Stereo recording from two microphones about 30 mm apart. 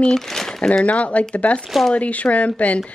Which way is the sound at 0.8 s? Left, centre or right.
Left.